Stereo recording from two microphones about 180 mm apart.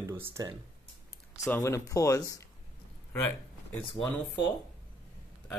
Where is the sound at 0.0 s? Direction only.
15° right (ahead or behind).